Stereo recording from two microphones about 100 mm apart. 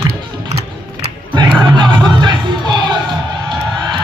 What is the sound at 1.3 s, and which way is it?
Music, 50° right (ahead or behind).